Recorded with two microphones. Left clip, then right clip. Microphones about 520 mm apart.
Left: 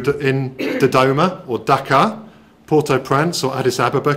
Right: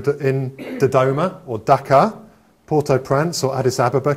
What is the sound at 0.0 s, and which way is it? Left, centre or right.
Speech, right.